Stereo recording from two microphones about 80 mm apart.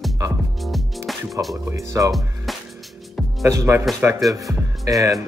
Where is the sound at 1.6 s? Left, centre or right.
Right.